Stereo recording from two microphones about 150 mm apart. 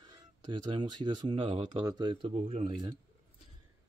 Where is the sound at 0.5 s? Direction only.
30° right (ahead or behind).